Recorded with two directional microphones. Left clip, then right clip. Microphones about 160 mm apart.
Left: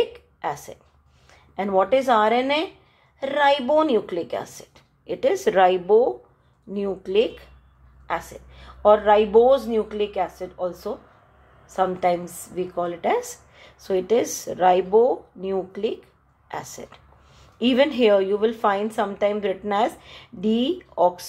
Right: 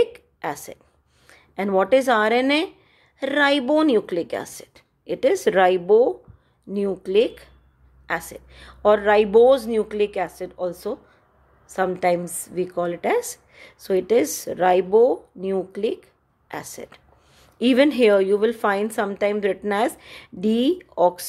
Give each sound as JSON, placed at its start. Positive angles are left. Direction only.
{"t": 0.0, "sound": "a sound", "side_deg": -55}
{"t": 1.3, "sound": "a woman's voice", "side_deg": -55}
{"t": 8.1, "sound": "a woman's voice", "side_deg": -60}